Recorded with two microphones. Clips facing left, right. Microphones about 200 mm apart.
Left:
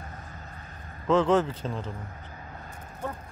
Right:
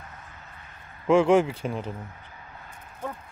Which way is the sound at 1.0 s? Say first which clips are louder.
Right 3 dB; 10° right (ahead or behind).